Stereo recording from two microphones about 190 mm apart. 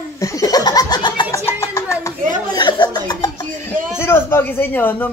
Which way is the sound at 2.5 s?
20° left (ahead or behind).